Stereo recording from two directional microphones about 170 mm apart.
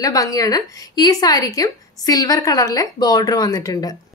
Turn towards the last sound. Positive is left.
turn(degrees=20)  # may be behind; listen again after turning